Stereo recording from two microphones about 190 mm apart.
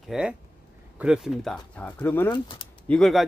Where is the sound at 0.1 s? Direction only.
5° right (ahead or behind).